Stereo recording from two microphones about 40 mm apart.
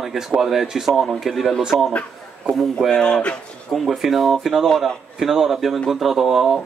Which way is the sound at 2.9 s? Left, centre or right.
Centre.